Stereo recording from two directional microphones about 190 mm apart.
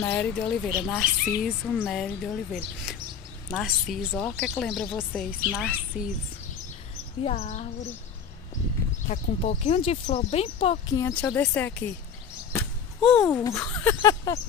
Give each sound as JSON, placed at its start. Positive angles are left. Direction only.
{"t": 0.0, "sound": "speech", "side_deg": 10}
{"t": 0.7, "sound": "speech", "side_deg": -5}
{"t": 7.2, "sound": "speech", "side_deg": 35}
{"t": 9.0, "sound": "speech", "side_deg": 40}
{"t": 10.9, "sound": "speech", "side_deg": 15}
{"t": 13.0, "sound": "speech", "side_deg": 5}